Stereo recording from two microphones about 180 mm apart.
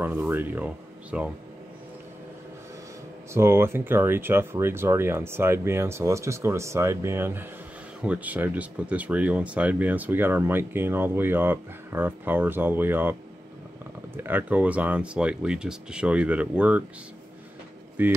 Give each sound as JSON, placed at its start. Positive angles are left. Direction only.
{"t": 0.0, "sound": "speech", "side_deg": -10}
{"t": 3.3, "sound": "speech", "side_deg": -15}
{"t": 14.1, "sound": "speech", "side_deg": -10}
{"t": 18.0, "sound": "speech", "side_deg": -10}